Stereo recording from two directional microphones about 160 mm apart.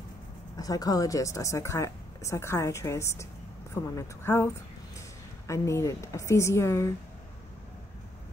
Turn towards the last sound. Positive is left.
turn(degrees=20)  # may be behind; listen again after turning